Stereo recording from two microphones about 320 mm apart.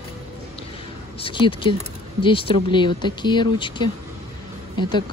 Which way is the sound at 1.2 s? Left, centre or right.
Centre.